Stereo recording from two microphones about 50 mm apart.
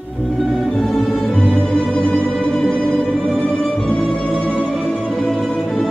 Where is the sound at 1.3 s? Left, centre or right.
Centre.